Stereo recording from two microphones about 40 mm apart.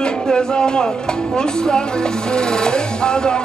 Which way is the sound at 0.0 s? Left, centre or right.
Centre.